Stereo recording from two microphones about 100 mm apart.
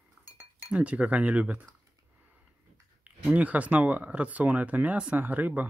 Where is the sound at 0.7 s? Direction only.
10° right (ahead or behind).